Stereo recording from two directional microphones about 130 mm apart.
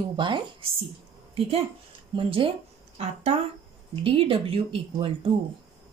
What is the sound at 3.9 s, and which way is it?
Speech, 45° right (ahead or behind).